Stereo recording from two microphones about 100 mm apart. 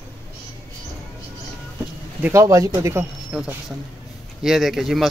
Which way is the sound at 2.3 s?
30° right (ahead or behind).